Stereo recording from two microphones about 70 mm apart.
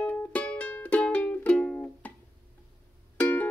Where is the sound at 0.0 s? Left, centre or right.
Left.